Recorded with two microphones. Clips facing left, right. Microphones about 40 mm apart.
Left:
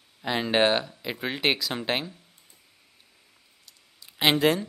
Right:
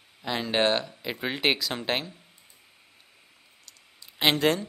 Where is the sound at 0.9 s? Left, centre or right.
Centre.